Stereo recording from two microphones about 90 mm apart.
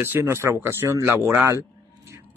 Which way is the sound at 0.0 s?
25° right (ahead or behind).